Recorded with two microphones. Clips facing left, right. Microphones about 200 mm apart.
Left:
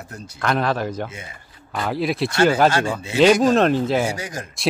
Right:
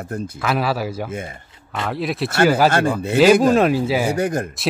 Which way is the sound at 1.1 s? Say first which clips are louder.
Right 9 dB; 50° right (ahead or behind).